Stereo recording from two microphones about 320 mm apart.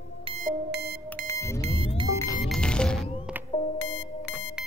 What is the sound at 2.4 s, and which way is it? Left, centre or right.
Music, centre.